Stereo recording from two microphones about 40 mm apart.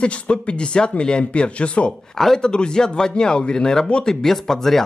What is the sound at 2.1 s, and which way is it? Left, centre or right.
A man's voice, centre.